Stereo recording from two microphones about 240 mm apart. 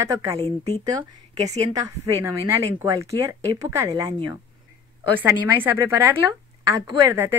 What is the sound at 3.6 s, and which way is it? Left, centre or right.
Speech, centre.